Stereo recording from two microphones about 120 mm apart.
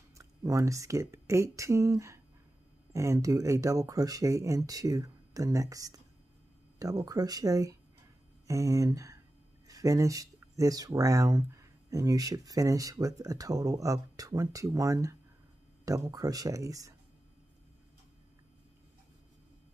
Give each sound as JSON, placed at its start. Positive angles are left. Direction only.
{"t": 0.2, "sound": "speech", "side_deg": -30}